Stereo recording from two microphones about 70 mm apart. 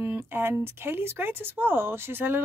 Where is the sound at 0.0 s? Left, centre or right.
Right.